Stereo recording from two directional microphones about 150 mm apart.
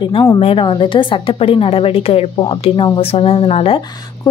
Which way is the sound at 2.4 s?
30° left (ahead or behind).